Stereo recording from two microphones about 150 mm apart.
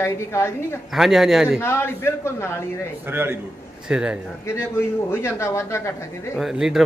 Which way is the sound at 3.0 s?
15° right (ahead or behind).